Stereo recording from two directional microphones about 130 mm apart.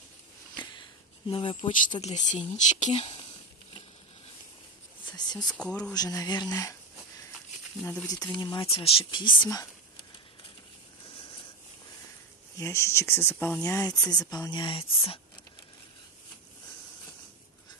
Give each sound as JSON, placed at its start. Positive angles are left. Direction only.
{"t": 0.6, "sound": "a sound", "side_deg": 40}
{"t": 2.0, "sound": "speech", "side_deg": 65}
{"t": 5.0, "sound": "a sound", "side_deg": 35}
{"t": 5.5, "sound": "speech", "side_deg": 10}
{"t": 5.9, "sound": "speech", "side_deg": 30}
{"t": 7.8, "sound": "speech", "side_deg": 10}
{"t": 8.1, "sound": "speech", "side_deg": 35}
{"t": 12.5, "sound": "speech", "side_deg": 20}